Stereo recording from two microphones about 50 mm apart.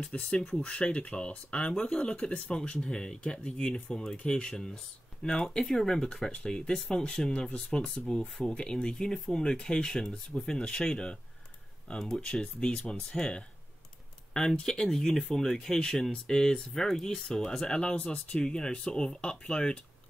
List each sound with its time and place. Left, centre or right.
0.0 s speech: left